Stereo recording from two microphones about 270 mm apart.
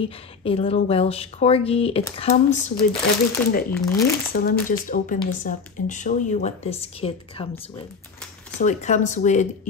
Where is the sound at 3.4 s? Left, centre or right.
Centre.